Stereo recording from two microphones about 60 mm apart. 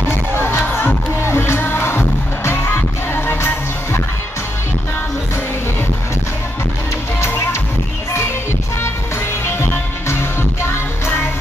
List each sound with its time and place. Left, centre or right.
0.4 s music: left
7.2 s music: left
9.4 s music: left